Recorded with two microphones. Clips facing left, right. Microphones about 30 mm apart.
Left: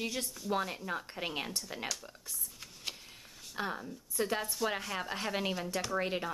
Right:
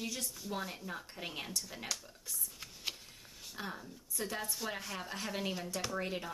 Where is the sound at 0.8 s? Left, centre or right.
Left.